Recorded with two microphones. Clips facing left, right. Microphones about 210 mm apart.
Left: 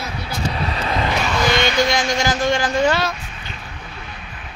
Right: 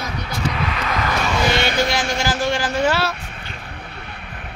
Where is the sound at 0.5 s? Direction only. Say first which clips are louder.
Left 1 dB; 35° left (ahead or behind).